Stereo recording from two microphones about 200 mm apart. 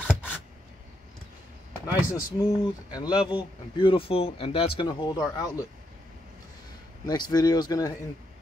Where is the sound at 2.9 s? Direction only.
20° left (ahead or behind).